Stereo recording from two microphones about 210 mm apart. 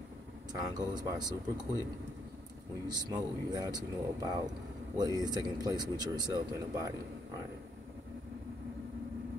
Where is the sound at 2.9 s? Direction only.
20° right (ahead or behind).